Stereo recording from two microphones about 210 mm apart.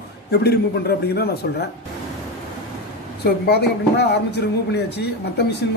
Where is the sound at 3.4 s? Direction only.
50° left (ahead or behind).